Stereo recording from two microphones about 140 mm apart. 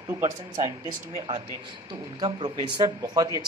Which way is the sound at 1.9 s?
35° right (ahead or behind).